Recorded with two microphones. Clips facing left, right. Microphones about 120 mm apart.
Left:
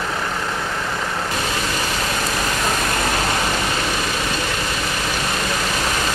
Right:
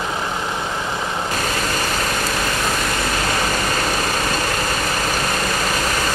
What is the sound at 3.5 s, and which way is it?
Vehicle, 45° right (ahead or behind).